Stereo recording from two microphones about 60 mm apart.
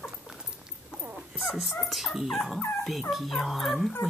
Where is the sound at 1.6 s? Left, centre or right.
Centre.